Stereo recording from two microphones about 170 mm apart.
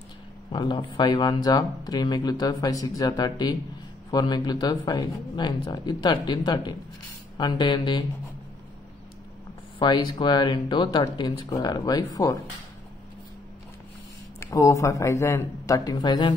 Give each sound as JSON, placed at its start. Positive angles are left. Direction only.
{"t": 0.5, "sound": "speech", "side_deg": 25}
{"t": 9.8, "sound": "speech", "side_deg": 25}
{"t": 14.4, "sound": "speech", "side_deg": 20}